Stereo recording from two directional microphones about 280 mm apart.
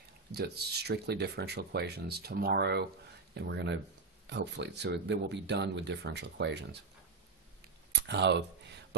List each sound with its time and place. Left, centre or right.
0.3 s speech: right
7.9 s speech: right